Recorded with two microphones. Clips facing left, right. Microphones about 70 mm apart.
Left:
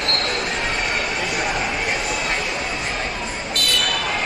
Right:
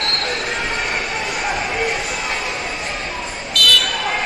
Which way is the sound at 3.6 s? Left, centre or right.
Left.